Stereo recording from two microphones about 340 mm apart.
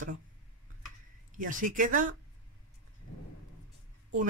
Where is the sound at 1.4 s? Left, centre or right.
Right.